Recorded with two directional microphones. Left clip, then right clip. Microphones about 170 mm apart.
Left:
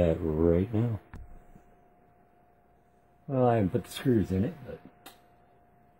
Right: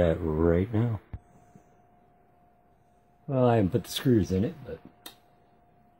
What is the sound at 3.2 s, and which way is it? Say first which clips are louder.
Speech: right 2 dB; 60° right (ahead or behind).